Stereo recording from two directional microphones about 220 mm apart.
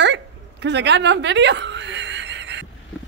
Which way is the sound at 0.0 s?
50° right (ahead or behind).